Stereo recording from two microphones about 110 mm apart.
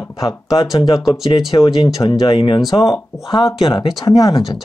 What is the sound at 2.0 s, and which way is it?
Speech, 45° left (ahead or behind).